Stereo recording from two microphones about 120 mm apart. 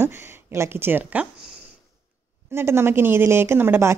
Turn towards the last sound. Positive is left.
turn(degrees=-20)  # may be behind; listen again after turning